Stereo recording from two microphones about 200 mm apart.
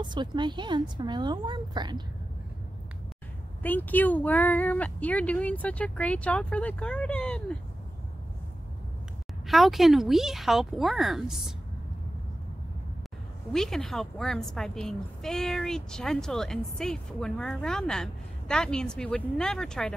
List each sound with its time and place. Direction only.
0.0 s a woman's voice: 20° right (ahead or behind)
3.6 s speech: 10° left (ahead or behind)
9.5 s a woman's voice: centre (ahead or behind)
13.5 s a woman's voice: centre (ahead or behind)